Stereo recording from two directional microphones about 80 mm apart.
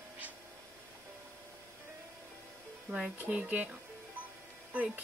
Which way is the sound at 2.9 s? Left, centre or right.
Centre.